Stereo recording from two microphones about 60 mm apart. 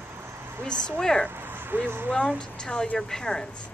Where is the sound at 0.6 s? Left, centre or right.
Centre.